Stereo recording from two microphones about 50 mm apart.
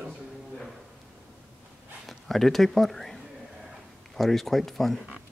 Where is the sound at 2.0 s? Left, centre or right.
Centre.